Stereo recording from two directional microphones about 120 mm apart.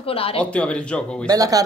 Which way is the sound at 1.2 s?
30° right (ahead or behind).